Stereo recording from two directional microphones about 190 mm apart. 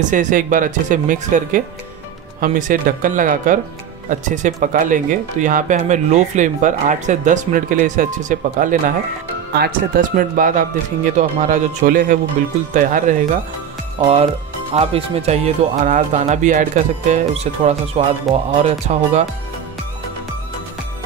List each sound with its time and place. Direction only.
0.0 s speech: 40° right (ahead or behind)
14.8 s speech: 30° right (ahead or behind)
18.3 s speech: centre (ahead or behind)
18.6 s speech: 35° right (ahead or behind)